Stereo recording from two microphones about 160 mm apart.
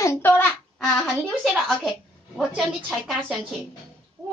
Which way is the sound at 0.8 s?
Centre (ahead or behind).